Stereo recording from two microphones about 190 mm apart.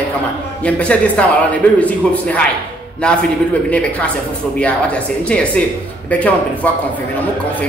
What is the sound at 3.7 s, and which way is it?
A woman's voice, 5° left (ahead or behind).